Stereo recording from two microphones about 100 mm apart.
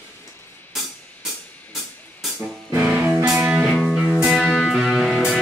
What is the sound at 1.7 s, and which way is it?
Music, centre (ahead or behind).